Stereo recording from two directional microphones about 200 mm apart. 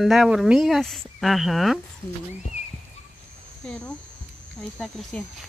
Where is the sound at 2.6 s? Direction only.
35° left (ahead or behind).